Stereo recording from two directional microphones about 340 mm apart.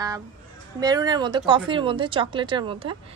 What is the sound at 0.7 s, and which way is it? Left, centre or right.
A woman's voice, centre.